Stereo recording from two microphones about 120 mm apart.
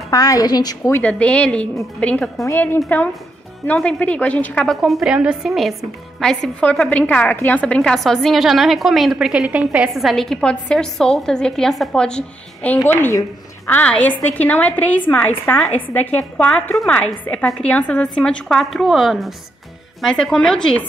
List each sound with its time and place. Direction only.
0.1 s a woman's voice: 30° left (ahead or behind)
0.9 s a woman's voice: 10° left (ahead or behind)
2.4 s a woman's voice: 20° left (ahead or behind)
3.6 s a woman's voice: 10° left (ahead or behind)
4.8 s a woman's voice: 5° right (ahead or behind)
12.7 s a woman's voice: 20° left (ahead or behind)